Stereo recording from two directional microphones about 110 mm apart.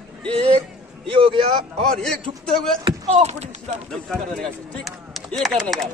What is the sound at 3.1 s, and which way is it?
Speech, 85° right.